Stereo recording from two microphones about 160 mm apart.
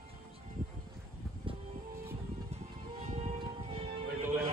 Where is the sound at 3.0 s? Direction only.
45° right (ahead or behind).